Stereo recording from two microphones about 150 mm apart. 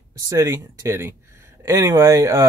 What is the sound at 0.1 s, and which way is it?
Speech, 20° right (ahead or behind).